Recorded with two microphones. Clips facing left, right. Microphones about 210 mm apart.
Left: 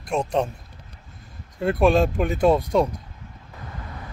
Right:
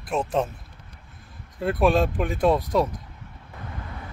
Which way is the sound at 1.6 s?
Centre (ahead or behind).